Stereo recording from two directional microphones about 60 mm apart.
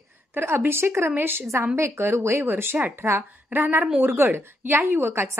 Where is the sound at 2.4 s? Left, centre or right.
Right.